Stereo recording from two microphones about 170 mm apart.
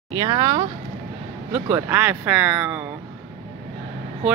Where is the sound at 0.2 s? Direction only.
20° right (ahead or behind).